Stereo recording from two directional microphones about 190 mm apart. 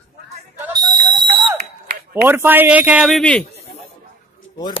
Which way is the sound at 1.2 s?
25° right (ahead or behind).